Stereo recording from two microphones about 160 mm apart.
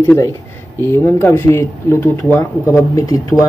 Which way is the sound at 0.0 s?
15° left (ahead or behind).